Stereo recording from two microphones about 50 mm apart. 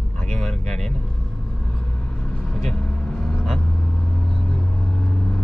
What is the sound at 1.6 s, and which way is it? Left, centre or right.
Vehicle, centre.